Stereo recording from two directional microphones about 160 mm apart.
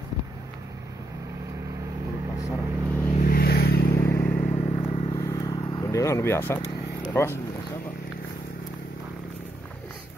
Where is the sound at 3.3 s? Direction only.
75° left (ahead or behind).